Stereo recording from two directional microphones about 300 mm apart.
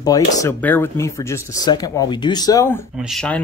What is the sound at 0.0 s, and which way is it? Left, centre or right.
Speech, centre.